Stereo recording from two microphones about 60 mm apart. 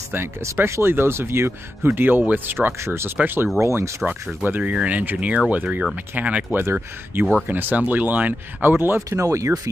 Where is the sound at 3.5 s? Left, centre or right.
Right.